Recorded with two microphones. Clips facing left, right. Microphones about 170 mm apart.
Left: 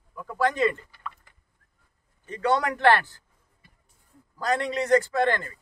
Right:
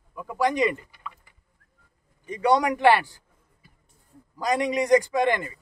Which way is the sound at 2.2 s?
15° right (ahead or behind).